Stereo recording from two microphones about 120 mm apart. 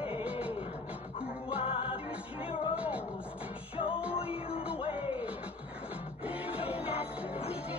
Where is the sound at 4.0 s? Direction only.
10° right (ahead or behind).